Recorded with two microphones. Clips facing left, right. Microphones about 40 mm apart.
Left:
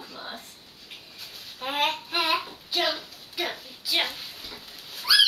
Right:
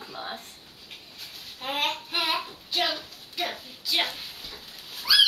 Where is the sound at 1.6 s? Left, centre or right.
Centre.